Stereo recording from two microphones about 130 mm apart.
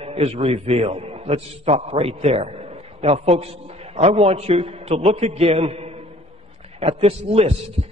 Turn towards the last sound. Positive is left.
turn(degrees=-50)  # may be behind; listen again after turning